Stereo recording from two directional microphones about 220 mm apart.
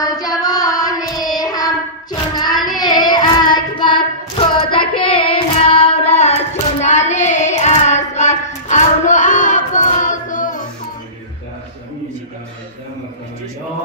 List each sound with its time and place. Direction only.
0.0 s child singing: 15° left (ahead or behind); by 10.6 s 35° left (ahead or behind)